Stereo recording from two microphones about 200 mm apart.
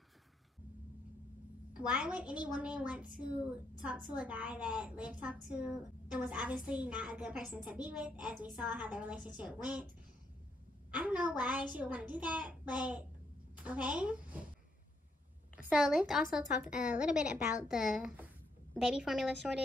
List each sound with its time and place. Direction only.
1.7 s a woman's voice: 5° right (ahead or behind)
11.0 s a woman's voice: 5° right (ahead or behind)
15.7 s a woman's voice: 5° right (ahead or behind)